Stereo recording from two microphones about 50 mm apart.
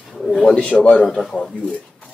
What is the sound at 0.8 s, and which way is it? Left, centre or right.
Speech, left.